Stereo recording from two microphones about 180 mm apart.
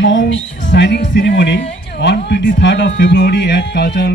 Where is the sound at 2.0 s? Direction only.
70° left (ahead or behind).